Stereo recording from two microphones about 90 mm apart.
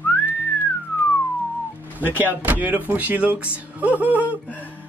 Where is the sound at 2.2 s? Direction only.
20° right (ahead or behind).